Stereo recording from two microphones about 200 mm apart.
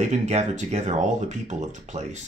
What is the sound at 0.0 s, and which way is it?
Speech, 35° right (ahead or behind).